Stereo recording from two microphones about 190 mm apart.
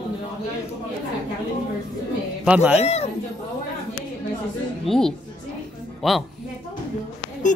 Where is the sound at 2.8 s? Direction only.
35° left (ahead or behind).